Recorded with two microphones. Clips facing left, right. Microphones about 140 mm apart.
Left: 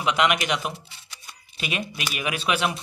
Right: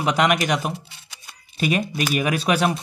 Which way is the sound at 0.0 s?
40° right (ahead or behind).